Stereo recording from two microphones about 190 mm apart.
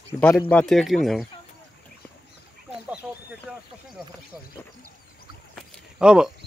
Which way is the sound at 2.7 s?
5° right (ahead or behind).